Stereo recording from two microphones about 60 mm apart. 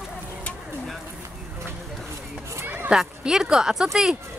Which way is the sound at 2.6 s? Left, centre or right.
Right.